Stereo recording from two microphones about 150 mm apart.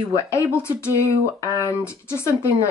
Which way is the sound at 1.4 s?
20° left (ahead or behind).